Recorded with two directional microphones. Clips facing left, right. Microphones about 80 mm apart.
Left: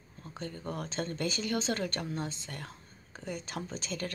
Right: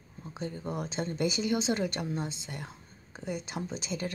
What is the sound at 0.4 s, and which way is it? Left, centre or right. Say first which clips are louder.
A woman's voice: right 3 dB; centre.